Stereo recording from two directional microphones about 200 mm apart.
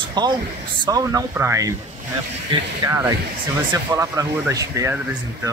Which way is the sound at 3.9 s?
15° right (ahead or behind).